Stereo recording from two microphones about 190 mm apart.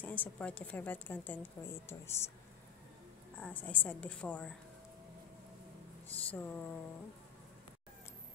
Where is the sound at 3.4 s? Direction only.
10° left (ahead or behind).